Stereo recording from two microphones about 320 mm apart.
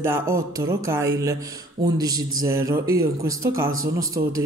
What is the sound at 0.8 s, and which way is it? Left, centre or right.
Speech, centre.